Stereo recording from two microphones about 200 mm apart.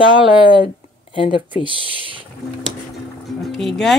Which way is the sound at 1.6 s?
25° right (ahead or behind).